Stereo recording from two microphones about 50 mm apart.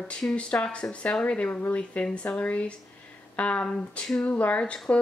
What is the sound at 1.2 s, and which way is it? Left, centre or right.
Speech, left.